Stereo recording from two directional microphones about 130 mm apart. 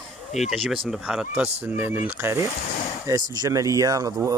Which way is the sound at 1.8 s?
15° right (ahead or behind).